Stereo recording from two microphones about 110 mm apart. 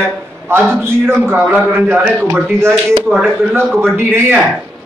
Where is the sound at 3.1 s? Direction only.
10° right (ahead or behind).